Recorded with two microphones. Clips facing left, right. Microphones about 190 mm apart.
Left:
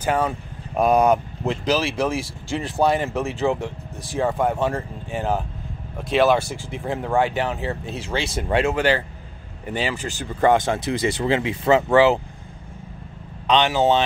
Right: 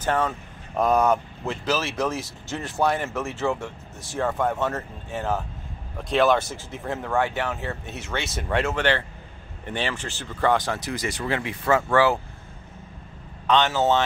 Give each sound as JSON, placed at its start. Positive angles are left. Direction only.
{"t": 0.0, "sound": "speech", "side_deg": 10}
{"t": 7.8, "sound": "speech", "side_deg": 30}
{"t": 8.5, "sound": "speech", "side_deg": 15}
{"t": 9.9, "sound": "speech", "side_deg": 40}
{"t": 10.4, "sound": "speech", "side_deg": 20}
{"t": 13.5, "sound": "speech", "side_deg": 15}